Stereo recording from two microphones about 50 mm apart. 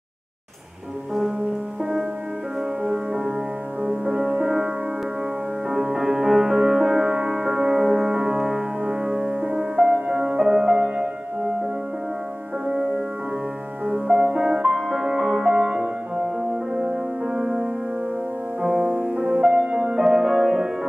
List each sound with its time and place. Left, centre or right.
2.8 s music: centre
4.4 s music: centre
5.7 s music: centre
13.8 s music: centre
18.8 s music: centre